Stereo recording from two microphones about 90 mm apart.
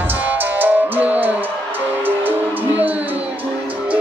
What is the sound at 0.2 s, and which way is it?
Music, 20° right (ahead or behind).